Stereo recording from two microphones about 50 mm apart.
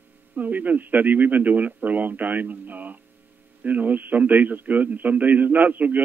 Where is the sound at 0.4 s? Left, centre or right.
Right.